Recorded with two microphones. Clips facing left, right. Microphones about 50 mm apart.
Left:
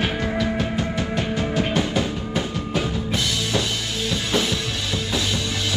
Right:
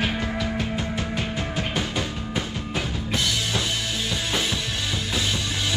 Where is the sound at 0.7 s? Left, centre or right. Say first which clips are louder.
Left 3 dB; centre.